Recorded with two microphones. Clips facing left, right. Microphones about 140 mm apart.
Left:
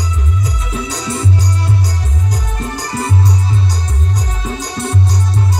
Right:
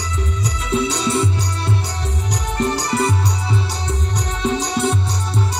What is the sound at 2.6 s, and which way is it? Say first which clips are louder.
Music: right 6 dB; 70° right (ahead or behind).